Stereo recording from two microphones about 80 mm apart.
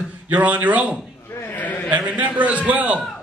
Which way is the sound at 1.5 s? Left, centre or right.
Left.